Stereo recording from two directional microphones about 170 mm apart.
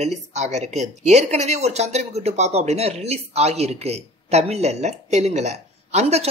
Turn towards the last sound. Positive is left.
turn(degrees=-40)  # may be behind; listen again after turning